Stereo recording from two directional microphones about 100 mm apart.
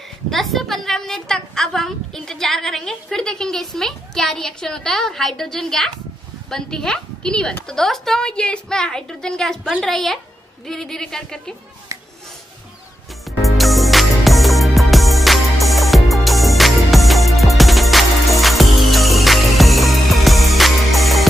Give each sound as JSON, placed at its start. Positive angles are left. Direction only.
{"t": 0.3, "sound": "a woman's voice", "side_deg": 0}
{"t": 11.9, "sound": "a sound", "side_deg": -35}
{"t": 13.3, "sound": "music", "side_deg": 0}